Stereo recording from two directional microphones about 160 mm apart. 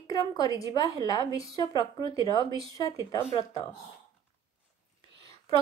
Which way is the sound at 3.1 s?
40° left (ahead or behind).